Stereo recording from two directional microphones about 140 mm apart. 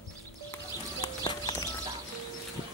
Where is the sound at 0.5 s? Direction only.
25° left (ahead or behind).